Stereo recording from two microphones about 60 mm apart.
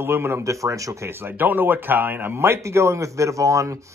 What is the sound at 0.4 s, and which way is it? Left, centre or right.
Speech, right.